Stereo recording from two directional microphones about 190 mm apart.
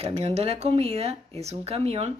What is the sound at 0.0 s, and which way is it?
Speech, 30° right (ahead or behind).